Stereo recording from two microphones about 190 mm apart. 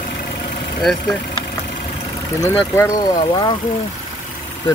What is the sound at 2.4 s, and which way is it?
Speech, 15° left (ahead or behind).